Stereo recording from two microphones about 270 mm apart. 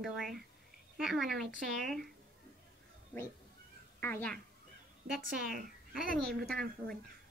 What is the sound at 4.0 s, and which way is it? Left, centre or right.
Speech, centre.